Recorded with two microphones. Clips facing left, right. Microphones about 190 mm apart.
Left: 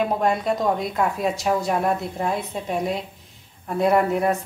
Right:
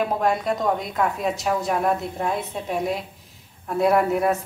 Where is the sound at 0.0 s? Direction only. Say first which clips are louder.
Left 1 dB; centre (ahead or behind).